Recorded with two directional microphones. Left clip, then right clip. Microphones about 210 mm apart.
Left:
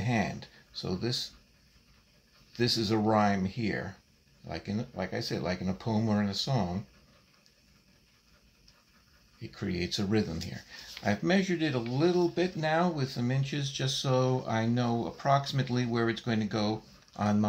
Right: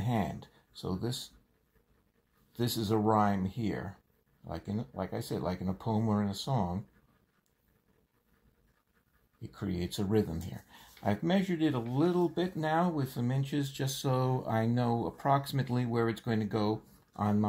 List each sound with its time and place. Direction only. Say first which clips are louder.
0.0 s speech: left 3 dB; 15° right (ahead or behind)
2.5 s speech: left 3 dB; 15° right (ahead or behind)
9.5 s speech: left 3 dB; 15° right (ahead or behind)
11.1 s speech: left 3 dB; 15° right (ahead or behind)